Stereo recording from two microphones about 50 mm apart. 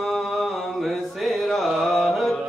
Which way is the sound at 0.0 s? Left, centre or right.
Centre.